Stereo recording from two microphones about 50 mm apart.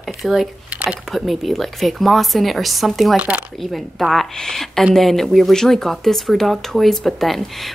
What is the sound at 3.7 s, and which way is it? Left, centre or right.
Speech, centre.